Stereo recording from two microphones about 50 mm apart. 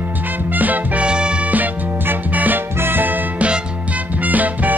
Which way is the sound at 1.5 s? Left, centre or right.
Right.